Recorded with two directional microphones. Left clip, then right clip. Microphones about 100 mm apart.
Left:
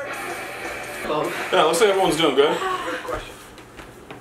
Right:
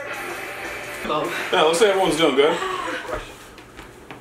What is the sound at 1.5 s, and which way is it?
Speech, 20° left (ahead or behind).